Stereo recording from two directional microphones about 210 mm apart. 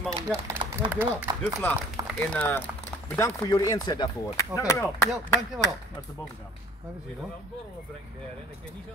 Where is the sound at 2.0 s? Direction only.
15° right (ahead or behind).